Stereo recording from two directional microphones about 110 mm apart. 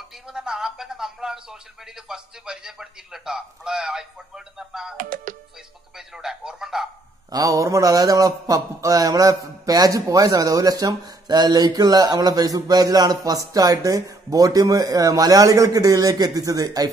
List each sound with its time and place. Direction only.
0.3 s speech: 5° right (ahead or behind)
5.9 s speech: 5° right (ahead or behind)
7.2 s a man's voice: 35° right (ahead or behind)